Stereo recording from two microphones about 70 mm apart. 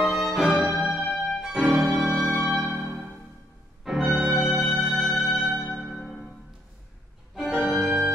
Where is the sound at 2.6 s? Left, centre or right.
Right.